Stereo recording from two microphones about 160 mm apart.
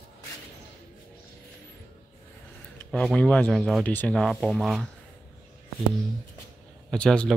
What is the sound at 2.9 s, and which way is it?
Speech, 5° left (ahead or behind).